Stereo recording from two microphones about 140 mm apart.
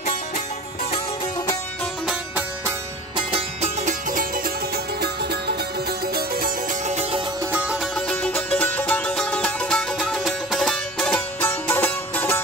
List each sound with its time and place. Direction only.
3.2 s music: 40° right (ahead or behind)
3.8 s music: 75° right (ahead or behind)
6.1 s music: 90° right
6.9 s music: 50° right (ahead or behind)
7.5 s music: 5° right (ahead or behind)
8.1 s music: 10° left (ahead or behind)